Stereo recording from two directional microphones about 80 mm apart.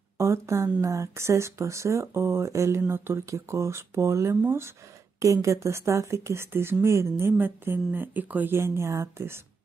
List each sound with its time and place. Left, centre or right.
0.2 s a woman's voice: right